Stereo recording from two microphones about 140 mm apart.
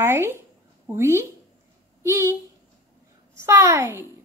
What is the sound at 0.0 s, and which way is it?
A woman's voice, 20° right (ahead or behind).